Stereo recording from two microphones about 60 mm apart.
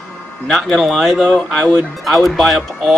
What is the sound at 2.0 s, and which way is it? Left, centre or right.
Speech, centre.